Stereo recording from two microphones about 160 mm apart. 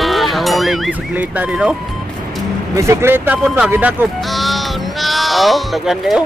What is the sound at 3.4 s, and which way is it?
Speech, centre (ahead or behind).